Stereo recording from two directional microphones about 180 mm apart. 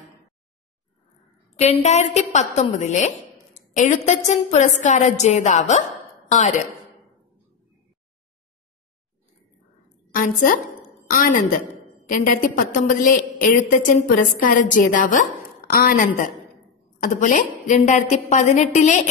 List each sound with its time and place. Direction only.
1.6 s a woman's voice: 40° left (ahead or behind)
10.1 s a woman's voice: 50° left (ahead or behind)